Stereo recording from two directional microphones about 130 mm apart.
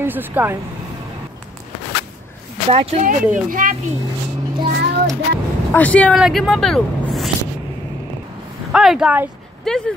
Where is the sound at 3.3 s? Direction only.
90° right.